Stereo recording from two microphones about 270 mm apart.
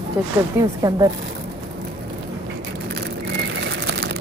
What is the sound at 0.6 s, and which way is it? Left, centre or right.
Speech, centre.